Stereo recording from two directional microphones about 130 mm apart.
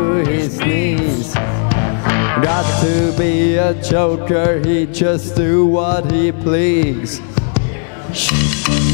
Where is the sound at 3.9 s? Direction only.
40° left (ahead or behind).